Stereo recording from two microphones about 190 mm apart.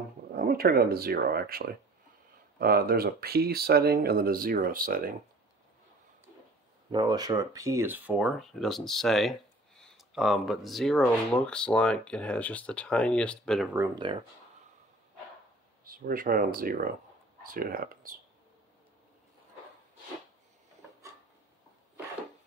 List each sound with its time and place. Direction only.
0.3 s speech: 50° right (ahead or behind)
6.9 s speech: 20° right (ahead or behind); by 13.7 s 5° left (ahead or behind)
13.9 s speech: 25° right (ahead or behind)
15.8 s speech: 50° right (ahead or behind)